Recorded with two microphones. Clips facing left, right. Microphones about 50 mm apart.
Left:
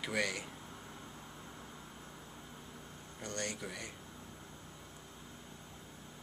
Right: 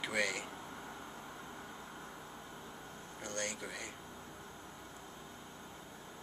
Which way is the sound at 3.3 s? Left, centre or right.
Right.